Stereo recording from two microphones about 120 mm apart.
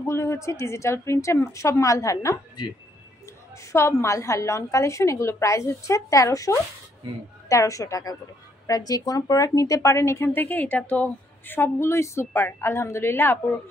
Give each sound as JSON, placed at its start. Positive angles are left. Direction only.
{"t": 0.0, "sound": "speech", "side_deg": 25}
{"t": 3.7, "sound": "speech", "side_deg": 25}